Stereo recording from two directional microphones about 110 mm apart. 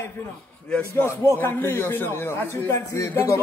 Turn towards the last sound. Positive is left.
turn(degrees=25)  # may be behind; listen again after turning